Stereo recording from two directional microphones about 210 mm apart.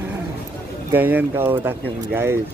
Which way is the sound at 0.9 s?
10° right (ahead or behind).